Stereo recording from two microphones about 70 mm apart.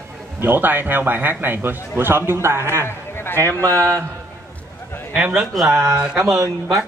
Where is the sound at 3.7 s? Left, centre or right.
Right.